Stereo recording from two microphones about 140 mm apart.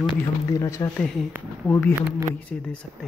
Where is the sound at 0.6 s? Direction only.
20° left (ahead or behind).